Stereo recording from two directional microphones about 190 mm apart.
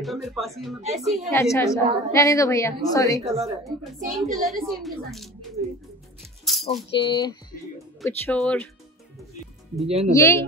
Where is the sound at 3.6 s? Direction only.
Centre (ahead or behind).